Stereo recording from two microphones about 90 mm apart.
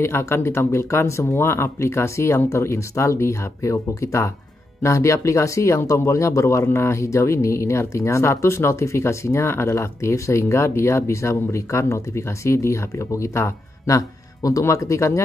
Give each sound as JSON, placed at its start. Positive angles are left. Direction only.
{"t": 0.0, "sound": "speech", "side_deg": 30}